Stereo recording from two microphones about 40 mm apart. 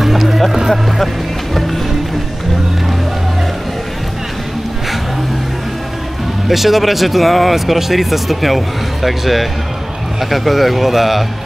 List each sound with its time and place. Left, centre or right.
0.0 s music: centre
6.4 s speech: centre